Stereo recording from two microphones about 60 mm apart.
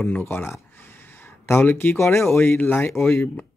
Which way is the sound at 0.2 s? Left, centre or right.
Left.